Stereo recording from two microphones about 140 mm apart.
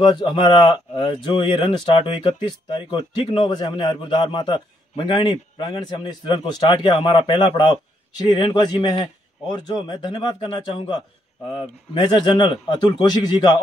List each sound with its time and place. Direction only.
0.0 s speech: 35° left (ahead or behind)